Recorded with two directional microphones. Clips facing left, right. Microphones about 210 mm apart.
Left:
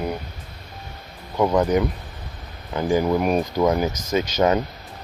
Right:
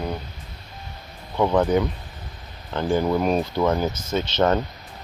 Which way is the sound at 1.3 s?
10° left (ahead or behind).